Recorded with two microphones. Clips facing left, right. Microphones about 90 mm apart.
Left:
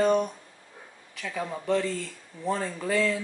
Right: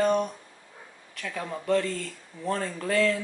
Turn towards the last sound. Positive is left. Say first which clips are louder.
# right 1 dB
turn(degrees=5)  # may be behind; listen again after turning